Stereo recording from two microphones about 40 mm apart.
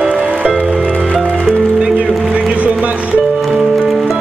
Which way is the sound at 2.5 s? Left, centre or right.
Right.